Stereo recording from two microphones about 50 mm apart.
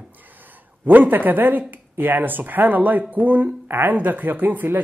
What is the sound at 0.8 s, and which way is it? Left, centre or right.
Speech, right.